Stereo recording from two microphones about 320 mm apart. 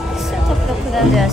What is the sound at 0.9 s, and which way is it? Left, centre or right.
Speech, centre.